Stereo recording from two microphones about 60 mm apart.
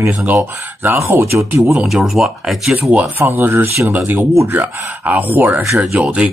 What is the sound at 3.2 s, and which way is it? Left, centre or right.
Speech, right.